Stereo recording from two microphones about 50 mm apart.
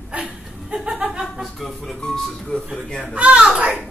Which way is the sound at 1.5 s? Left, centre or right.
Centre.